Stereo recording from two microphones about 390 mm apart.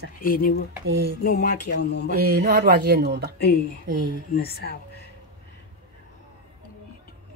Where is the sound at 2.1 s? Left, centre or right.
Right.